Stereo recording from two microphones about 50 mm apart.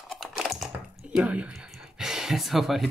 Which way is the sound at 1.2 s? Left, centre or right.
Right.